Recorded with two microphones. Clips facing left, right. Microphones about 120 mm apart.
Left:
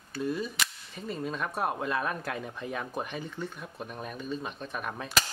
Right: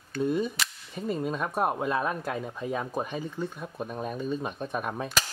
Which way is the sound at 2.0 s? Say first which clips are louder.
Right 3 dB; 15° right (ahead or behind).